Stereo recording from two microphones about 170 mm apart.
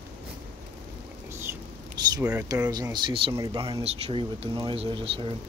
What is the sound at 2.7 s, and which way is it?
Speech, 25° right (ahead or behind).